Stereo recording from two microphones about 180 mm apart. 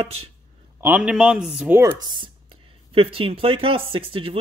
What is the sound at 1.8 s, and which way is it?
Speech, 20° right (ahead or behind).